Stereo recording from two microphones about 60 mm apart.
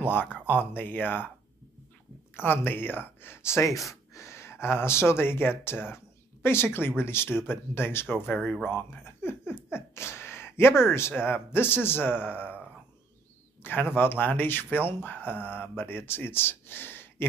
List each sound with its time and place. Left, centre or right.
0.5 s speech: left
2.3 s speech: left
8.3 s speech: centre
9.0 s a sound: left
10.9 s speech: left
13.6 s a sound: left
13.9 s speech: left